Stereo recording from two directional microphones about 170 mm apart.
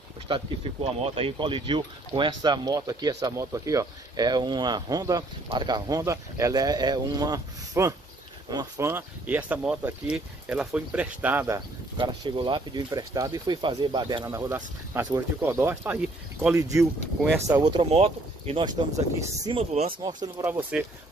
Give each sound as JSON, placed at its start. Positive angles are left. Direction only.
{"t": 0.3, "sound": "speech", "side_deg": -35}
{"t": 12.0, "sound": "speech", "side_deg": -30}
{"t": 19.7, "sound": "speech", "side_deg": -40}
{"t": 20.0, "sound": "speech", "side_deg": -25}
{"t": 20.4, "sound": "speech", "side_deg": -10}